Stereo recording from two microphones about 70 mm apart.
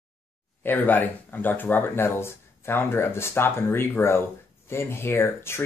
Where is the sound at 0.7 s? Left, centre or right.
Left.